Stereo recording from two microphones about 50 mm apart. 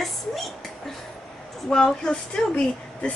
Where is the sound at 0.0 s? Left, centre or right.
Centre.